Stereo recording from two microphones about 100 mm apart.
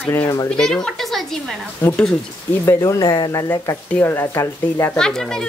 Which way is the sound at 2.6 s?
30° left (ahead or behind).